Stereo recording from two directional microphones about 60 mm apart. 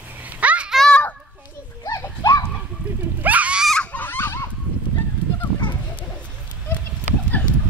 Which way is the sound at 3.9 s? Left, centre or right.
Left.